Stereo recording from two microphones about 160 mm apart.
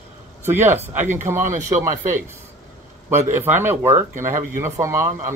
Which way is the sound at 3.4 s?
15° right (ahead or behind).